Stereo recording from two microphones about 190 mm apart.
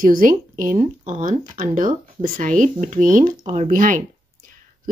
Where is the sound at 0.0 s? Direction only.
45° right (ahead or behind).